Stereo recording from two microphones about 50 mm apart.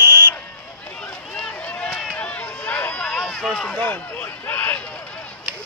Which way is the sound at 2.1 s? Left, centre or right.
Left.